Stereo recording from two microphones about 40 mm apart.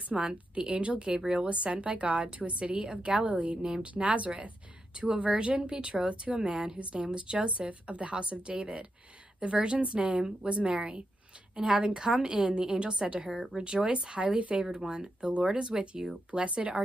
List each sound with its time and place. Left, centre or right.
0.3 s a woman's voice: right
13.3 s speech: centre
14.0 s a woman's voice: right